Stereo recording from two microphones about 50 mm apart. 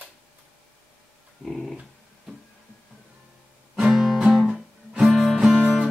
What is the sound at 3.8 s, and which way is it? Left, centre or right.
Guitar, centre.